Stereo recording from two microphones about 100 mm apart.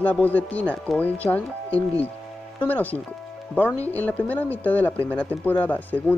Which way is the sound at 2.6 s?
15° left (ahead or behind).